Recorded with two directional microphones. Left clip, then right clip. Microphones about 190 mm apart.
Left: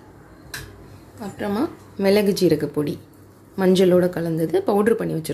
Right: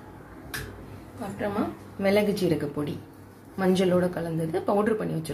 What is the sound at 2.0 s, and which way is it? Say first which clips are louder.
Speech: left 6 dB; 50° left (ahead or behind).